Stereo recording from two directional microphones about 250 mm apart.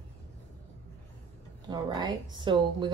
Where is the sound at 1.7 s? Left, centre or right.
Centre.